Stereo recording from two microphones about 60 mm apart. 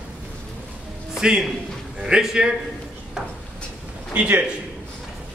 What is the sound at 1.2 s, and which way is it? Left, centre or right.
A man's voice, centre.